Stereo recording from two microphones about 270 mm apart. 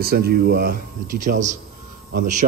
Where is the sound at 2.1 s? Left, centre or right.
Right.